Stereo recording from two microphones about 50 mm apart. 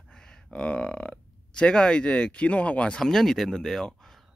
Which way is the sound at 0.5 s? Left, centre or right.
Left.